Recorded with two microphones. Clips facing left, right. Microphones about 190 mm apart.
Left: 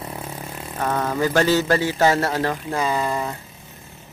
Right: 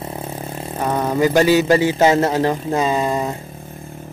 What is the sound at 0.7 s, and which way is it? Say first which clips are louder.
A man's voice: right 4 dB; 15° right (ahead or behind).